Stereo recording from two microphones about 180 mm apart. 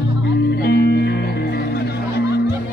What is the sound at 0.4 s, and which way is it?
Music, 65° left (ahead or behind).